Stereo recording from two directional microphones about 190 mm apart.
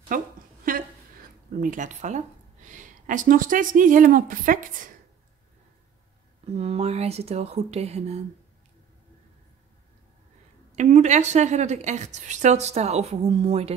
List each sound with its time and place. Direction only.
0.1 s a woman's voice: 45° right (ahead or behind)
0.7 s a sound: 45° right (ahead or behind)
1.6 s a woman's voice: 40° right (ahead or behind)
6.5 s a woman's voice: 35° right (ahead or behind)
10.8 s a woman's voice: 40° right (ahead or behind)